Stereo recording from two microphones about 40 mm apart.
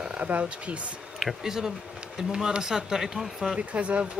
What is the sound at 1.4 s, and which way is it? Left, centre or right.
Speech, centre.